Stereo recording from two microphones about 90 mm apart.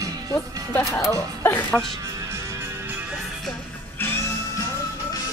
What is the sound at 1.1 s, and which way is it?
Speech, 35° left (ahead or behind).